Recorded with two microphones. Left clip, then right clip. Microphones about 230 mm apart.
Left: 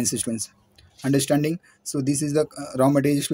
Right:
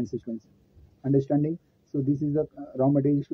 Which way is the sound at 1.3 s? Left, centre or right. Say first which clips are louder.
Left 4 dB; left.